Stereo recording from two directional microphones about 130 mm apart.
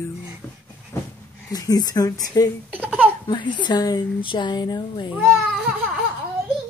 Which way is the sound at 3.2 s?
35° left (ahead or behind).